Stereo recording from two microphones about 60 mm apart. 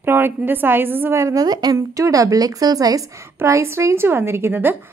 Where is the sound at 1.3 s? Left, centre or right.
Right.